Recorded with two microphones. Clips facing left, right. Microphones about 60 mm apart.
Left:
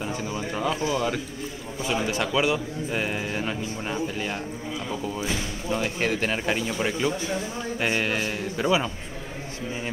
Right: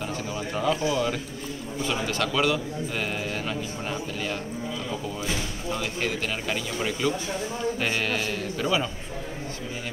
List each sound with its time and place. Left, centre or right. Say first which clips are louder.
0.5 s a man's voice: right 1 dB; centre
5.8 s speech: left 4 dB; left
7.8 s a man's voice: left 6 dB; centre